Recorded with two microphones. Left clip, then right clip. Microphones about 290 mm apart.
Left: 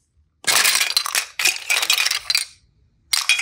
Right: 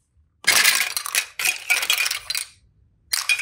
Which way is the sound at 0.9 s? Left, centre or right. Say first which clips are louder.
Left 4 dB; centre.